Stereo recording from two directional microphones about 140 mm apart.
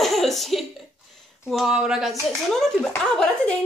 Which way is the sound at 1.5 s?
Centre (ahead or behind).